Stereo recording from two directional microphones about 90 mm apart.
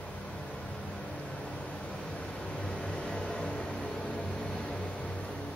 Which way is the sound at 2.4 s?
10° left (ahead or behind).